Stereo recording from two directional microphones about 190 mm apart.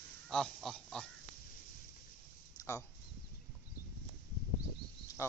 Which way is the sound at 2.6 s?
15° left (ahead or behind).